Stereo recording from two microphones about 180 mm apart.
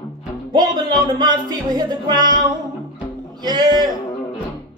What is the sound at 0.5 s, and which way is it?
Music, 25° right (ahead or behind).